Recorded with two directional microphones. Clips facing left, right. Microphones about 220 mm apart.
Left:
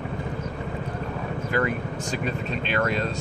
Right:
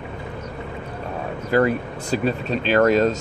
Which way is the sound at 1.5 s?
35° right (ahead or behind).